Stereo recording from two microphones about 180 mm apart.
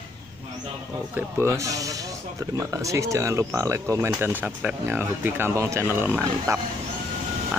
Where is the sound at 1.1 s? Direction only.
15° right (ahead or behind).